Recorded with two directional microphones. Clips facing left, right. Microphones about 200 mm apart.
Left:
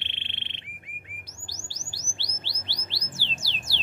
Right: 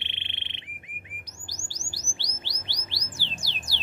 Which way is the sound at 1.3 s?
15° right (ahead or behind).